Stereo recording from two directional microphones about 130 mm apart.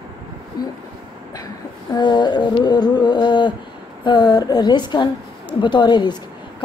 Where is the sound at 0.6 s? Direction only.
30° left (ahead or behind).